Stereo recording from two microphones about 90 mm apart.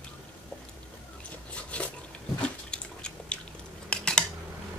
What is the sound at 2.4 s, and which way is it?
Biting, 10° left (ahead or behind).